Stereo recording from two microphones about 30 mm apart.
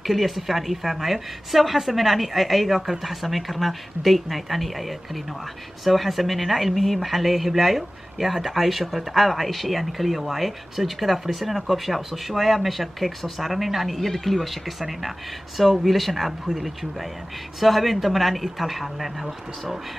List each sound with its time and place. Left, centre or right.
0.0 s speech: centre